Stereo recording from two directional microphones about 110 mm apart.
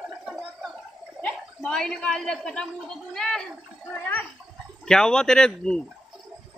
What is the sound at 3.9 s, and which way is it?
Speech, 15° left (ahead or behind).